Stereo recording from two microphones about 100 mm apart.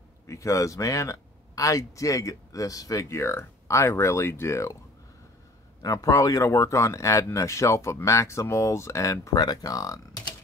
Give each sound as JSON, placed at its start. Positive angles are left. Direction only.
{"t": 0.3, "sound": "speech", "side_deg": 30}
{"t": 5.8, "sound": "speech", "side_deg": 35}